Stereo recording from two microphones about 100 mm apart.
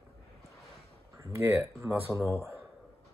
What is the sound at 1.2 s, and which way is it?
Speech, 30° right (ahead or behind).